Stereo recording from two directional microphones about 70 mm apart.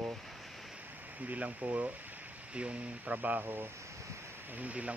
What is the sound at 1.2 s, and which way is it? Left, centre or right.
Speech, right.